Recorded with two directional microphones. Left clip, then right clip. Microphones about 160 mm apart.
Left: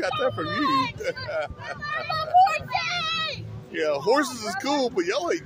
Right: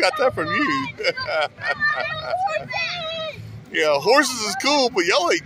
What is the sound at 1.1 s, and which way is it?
Speech, 5° right (ahead or behind).